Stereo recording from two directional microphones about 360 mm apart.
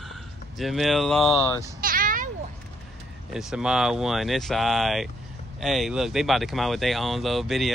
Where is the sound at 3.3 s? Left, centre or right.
Centre.